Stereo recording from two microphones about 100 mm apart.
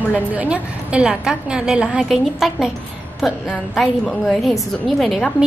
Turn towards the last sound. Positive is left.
turn(degrees=0)  # may be behind; listen again after turning